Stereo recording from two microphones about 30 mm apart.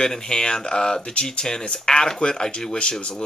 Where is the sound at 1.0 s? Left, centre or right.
Left.